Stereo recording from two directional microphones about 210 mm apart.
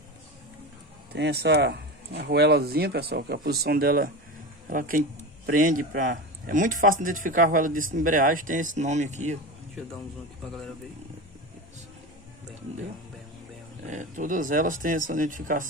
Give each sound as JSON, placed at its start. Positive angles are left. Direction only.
{"t": 1.1, "sound": "speech", "side_deg": -55}
{"t": 13.8, "sound": "speech", "side_deg": -35}